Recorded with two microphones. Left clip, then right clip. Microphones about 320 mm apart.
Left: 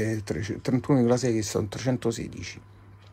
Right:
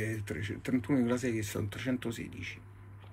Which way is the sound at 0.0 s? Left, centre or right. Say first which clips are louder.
Left 8 dB; left.